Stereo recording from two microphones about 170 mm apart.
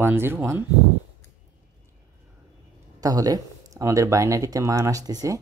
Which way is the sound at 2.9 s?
20° right (ahead or behind).